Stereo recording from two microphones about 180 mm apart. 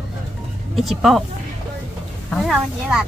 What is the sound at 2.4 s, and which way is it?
Speech, centre (ahead or behind).